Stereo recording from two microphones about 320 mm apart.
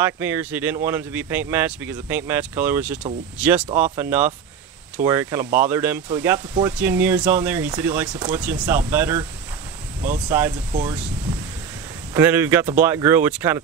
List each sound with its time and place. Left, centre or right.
0.0 s speech: centre
10.0 s speech: right
12.1 s speech: centre